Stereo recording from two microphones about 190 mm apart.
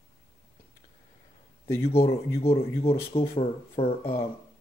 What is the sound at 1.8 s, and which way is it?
Speech, 30° left (ahead or behind).